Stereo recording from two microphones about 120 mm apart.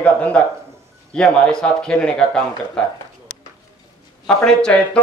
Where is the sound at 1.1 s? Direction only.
5° left (ahead or behind).